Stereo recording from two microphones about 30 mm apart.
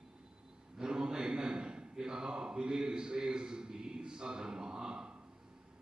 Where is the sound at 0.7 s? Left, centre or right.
Right.